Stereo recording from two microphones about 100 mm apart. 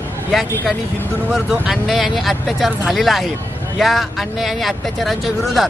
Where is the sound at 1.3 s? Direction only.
Centre (ahead or behind).